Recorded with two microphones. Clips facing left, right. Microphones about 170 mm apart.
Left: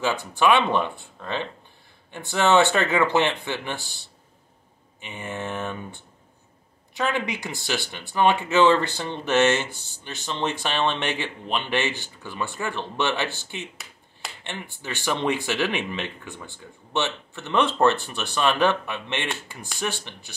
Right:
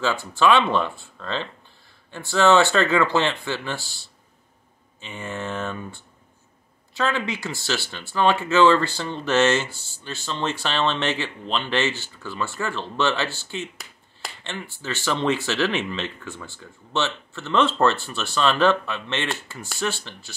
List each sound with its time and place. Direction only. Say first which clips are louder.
0.0 s speech: right 1 dB; 15° left (ahead or behind)
5.0 s speech: right 1 dB; 20° left (ahead or behind)